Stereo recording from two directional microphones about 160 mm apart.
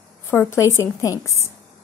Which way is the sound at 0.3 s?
15° left (ahead or behind).